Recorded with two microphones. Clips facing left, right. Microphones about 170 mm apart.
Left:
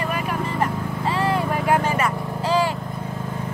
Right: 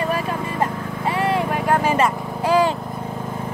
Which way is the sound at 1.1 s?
20° right (ahead or behind).